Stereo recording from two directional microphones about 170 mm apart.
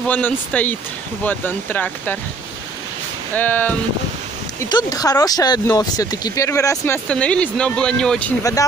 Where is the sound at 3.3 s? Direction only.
10° left (ahead or behind).